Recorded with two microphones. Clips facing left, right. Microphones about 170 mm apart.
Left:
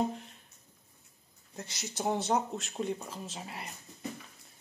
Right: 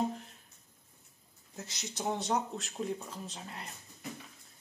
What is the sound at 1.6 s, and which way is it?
Speech, centre (ahead or behind).